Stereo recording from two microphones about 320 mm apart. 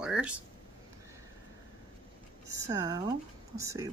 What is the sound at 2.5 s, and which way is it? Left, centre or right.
Speech, centre.